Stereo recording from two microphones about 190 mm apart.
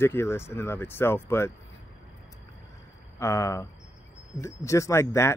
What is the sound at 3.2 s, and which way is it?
Speech, 15° left (ahead or behind).